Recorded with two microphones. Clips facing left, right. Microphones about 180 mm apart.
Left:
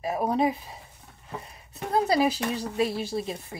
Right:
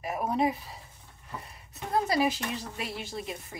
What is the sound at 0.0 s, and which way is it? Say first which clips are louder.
Speech: left 3 dB; 30° left (ahead or behind).